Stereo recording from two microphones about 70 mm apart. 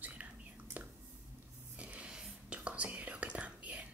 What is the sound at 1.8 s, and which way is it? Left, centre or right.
Whispering, centre.